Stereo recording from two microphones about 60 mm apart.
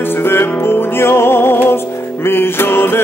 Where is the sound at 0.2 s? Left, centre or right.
Left.